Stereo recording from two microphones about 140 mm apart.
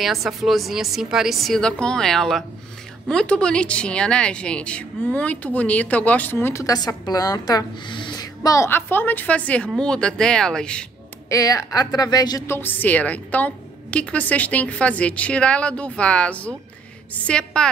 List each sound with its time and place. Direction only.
0.0 s a woman's voice: centre (ahead or behind); by 8.3 s 35° left (ahead or behind)
8.4 s a woman's voice: 20° left (ahead or behind)
11.2 s a woman's voice: 25° left (ahead or behind)
12.5 s speech: 15° left (ahead or behind)